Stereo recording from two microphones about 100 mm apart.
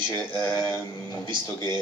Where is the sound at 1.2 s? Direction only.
50° right (ahead or behind).